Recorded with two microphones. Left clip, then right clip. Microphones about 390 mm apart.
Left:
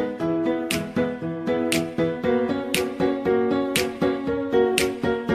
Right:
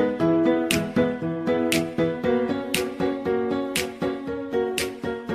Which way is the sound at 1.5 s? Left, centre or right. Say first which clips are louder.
Even; centre.